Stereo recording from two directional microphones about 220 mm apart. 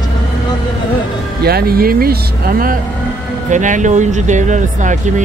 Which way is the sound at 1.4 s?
45° right (ahead or behind).